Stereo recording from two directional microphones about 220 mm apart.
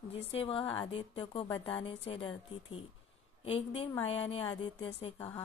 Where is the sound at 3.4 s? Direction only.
25° left (ahead or behind).